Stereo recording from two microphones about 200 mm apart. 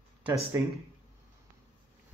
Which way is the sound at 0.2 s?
15° right (ahead or behind).